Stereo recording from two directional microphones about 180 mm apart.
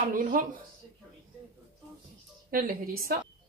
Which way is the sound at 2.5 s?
50° right (ahead or behind).